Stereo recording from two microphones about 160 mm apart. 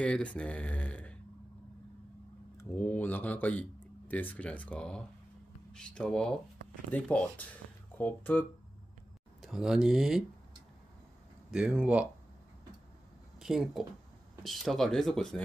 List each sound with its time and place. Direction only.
0.0 s speech: 5° left (ahead or behind)
2.5 s speech: 10° left (ahead or behind)
9.4 s speech: 5° right (ahead or behind)
11.5 s speech: 5° right (ahead or behind)
13.4 s speech: centre (ahead or behind)